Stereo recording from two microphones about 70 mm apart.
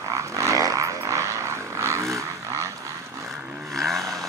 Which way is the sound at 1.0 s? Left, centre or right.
Right.